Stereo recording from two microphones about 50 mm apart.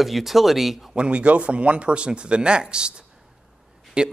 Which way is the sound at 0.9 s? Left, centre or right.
Right.